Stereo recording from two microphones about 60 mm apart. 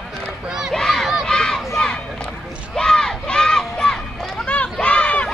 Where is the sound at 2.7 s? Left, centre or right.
Centre.